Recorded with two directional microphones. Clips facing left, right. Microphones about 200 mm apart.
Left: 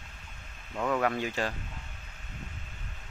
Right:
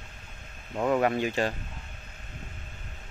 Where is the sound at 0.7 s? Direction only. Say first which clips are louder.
Right 4 dB; 25° right (ahead or behind).